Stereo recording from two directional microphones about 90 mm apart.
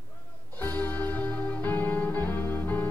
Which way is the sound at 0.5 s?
20° left (ahead or behind).